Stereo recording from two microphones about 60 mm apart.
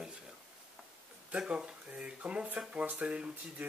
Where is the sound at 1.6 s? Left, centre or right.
Centre.